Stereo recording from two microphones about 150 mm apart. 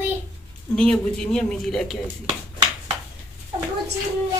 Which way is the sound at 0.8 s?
5° left (ahead or behind).